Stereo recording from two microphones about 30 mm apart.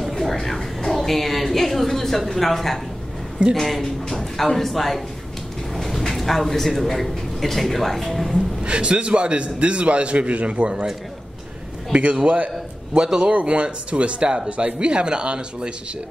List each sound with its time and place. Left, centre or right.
0.2 s a woman's voice: centre
5.8 s a sound: centre
6.9 s a man's voice: centre
8.6 s a man's voice: right
11.9 s speech: right
13.0 s speech: right
13.3 s a man's voice: right